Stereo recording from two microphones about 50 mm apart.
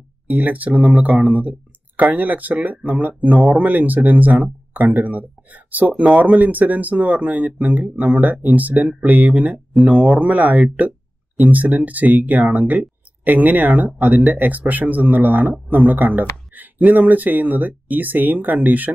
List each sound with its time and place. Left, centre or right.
0.3 s speech: right